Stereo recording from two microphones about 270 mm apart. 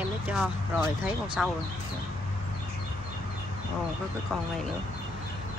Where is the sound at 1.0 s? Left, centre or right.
Centre.